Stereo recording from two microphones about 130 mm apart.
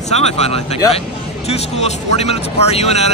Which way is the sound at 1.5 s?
55° left (ahead or behind).